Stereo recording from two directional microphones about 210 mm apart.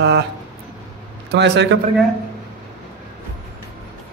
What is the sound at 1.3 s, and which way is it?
Speech, 55° right (ahead or behind).